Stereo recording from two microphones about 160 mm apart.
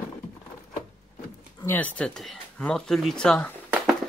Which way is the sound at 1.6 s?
10° left (ahead or behind).